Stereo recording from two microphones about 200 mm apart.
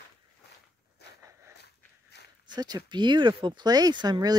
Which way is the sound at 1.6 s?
55° left (ahead or behind).